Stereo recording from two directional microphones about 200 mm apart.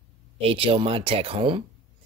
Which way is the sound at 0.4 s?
25° right (ahead or behind).